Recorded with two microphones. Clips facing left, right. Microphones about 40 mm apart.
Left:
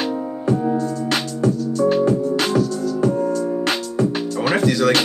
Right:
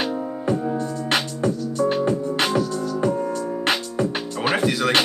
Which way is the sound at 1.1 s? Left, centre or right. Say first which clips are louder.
Left 1 dB; centre.